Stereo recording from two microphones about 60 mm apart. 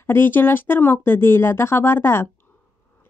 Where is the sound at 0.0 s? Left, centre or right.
Left.